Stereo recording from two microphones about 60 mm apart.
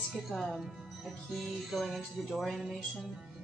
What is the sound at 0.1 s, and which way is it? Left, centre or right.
Music, centre.